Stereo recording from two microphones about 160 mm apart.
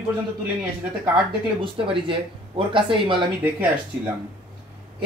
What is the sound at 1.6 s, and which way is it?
Speech, 30° right (ahead or behind).